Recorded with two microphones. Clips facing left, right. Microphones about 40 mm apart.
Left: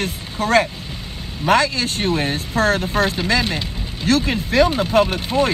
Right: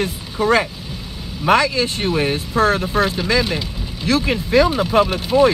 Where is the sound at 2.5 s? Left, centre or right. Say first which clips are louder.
Right 1 dB; right.